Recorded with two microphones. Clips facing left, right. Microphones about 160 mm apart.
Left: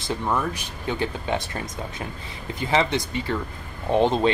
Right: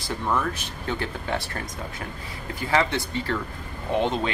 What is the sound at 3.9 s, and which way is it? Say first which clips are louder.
Speech: left 5 dB; 35° left (ahead or behind).